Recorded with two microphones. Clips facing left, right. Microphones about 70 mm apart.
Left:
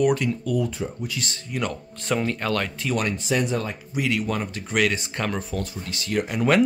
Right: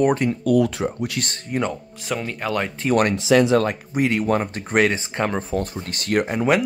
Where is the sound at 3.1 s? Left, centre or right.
Right.